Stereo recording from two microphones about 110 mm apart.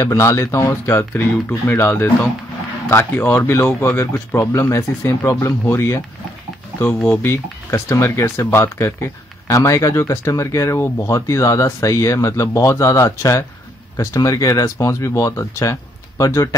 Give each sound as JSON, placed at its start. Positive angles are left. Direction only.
{"t": 0.0, "sound": "speech", "side_deg": 25}
{"t": 7.1, "sound": "speech", "side_deg": 20}